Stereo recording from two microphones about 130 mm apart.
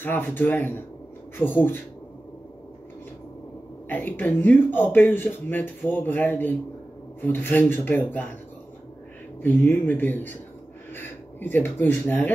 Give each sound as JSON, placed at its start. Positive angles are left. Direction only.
{"t": 0.0, "sound": "speech", "side_deg": 15}
{"t": 3.9, "sound": "speech", "side_deg": 15}
{"t": 9.4, "sound": "speech", "side_deg": 15}